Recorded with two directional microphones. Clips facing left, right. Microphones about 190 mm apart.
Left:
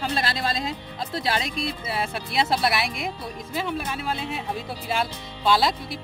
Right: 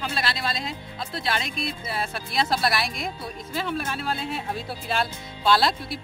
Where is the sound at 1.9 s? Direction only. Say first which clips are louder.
Left 1 dB; 25° left (ahead or behind).